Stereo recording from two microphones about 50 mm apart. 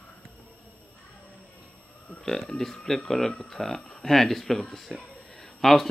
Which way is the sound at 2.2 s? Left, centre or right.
Centre.